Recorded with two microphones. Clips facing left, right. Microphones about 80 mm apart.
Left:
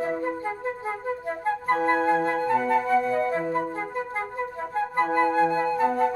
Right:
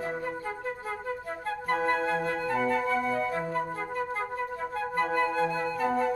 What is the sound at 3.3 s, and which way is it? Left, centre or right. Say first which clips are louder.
Flute: left 4 dB; left.